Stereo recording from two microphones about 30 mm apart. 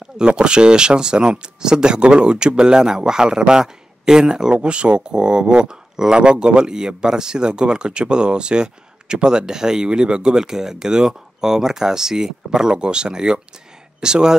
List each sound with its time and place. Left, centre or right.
0.2 s speech: right
2.0 s speech: right
4.6 s speech: right